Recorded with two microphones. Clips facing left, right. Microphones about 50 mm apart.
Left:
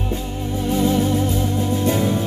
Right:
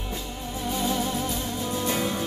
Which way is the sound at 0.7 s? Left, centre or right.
Left.